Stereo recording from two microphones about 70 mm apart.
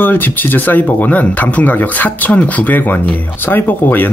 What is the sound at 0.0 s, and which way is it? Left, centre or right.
Speech, left.